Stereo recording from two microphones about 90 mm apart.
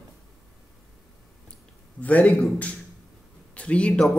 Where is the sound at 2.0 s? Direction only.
15° left (ahead or behind).